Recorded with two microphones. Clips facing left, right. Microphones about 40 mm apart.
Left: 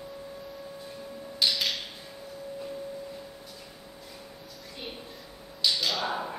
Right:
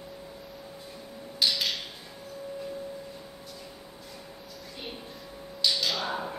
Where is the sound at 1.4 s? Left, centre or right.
Centre.